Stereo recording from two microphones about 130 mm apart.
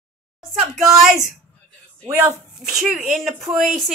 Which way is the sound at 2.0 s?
25° right (ahead or behind).